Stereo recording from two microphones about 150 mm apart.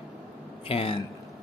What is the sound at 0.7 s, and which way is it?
Speech, 40° left (ahead or behind).